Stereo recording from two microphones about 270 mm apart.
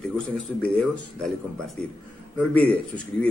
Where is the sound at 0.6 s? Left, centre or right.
Centre.